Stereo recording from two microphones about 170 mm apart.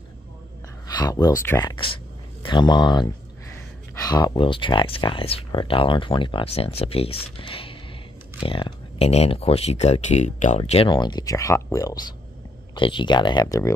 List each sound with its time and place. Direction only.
0.8 s a sound: 20° left (ahead or behind)
1.4 s speech: 15° left (ahead or behind); by 10.6 s 45° left (ahead or behind)
10.6 s speech: 30° left (ahead or behind)